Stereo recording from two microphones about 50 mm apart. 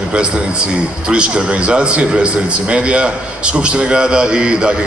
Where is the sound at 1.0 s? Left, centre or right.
Right.